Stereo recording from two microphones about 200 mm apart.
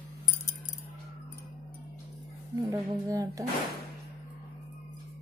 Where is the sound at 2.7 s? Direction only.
15° right (ahead or behind).